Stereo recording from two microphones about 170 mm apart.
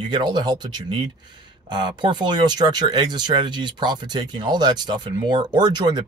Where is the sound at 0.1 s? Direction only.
25° right (ahead or behind).